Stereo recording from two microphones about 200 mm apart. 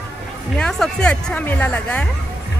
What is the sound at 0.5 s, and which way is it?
Speech, 5° left (ahead or behind).